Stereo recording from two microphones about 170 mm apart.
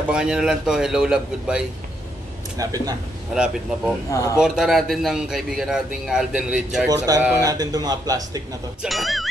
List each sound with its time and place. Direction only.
0.1 s speech: 5° right (ahead or behind)
2.5 s a man's voice: 20° right (ahead or behind)
3.3 s speech: 5° right (ahead or behind)
7.1 s a man's voice: 15° right (ahead or behind)
8.8 s speech: centre (ahead or behind)